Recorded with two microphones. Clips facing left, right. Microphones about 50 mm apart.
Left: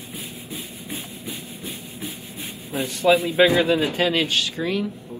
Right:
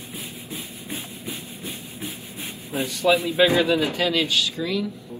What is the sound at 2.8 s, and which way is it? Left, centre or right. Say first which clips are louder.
A man's voice: left 2 dB; left.